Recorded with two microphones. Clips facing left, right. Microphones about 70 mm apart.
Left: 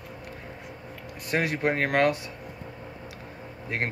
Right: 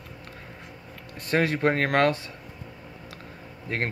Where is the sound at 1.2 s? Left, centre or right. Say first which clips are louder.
Right 3 dB; centre.